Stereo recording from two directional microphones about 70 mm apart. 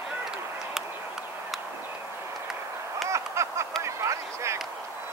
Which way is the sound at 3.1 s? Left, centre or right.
Right.